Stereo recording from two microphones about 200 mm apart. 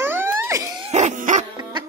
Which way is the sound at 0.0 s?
10° right (ahead or behind).